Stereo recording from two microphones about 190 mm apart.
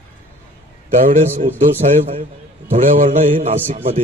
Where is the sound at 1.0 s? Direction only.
40° right (ahead or behind).